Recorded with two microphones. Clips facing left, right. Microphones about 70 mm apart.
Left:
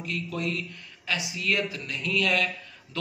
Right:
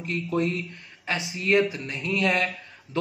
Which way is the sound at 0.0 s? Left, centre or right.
Right.